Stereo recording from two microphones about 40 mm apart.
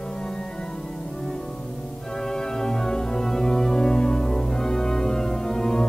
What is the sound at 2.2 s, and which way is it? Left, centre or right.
Music, centre.